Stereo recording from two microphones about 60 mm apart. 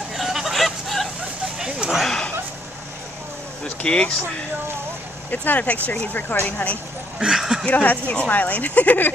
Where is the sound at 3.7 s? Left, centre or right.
Centre.